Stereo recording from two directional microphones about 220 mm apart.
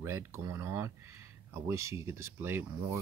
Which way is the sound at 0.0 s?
15° right (ahead or behind).